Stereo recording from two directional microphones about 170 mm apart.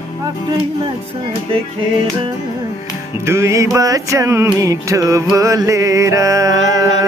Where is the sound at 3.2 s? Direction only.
15° right (ahead or behind).